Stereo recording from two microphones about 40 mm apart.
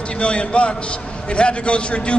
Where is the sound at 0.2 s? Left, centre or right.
Left.